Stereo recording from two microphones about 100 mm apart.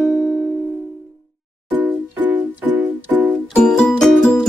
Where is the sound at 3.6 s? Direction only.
5° left (ahead or behind).